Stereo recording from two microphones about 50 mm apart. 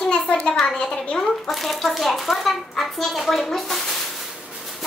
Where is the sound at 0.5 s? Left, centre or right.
Centre.